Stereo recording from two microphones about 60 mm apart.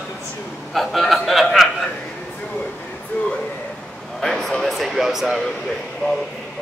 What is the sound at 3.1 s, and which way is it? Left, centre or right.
Speech, left.